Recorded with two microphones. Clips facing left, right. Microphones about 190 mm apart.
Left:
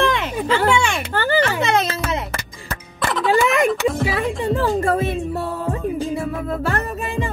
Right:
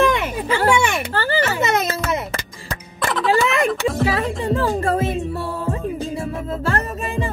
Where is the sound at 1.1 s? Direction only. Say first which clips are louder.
Left 2 dB; 35° right (ahead or behind).